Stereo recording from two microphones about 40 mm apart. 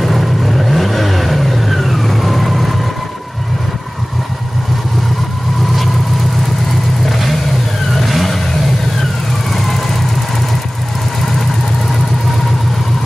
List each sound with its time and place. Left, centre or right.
0.0 s vehicle: centre
7.1 s vehicle: centre